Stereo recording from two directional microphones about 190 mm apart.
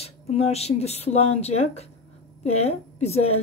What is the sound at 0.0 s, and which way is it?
A woman's voice, 35° left (ahead or behind).